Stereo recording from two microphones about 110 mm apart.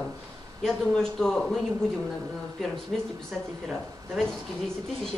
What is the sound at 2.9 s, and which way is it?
Speech, centre (ahead or behind).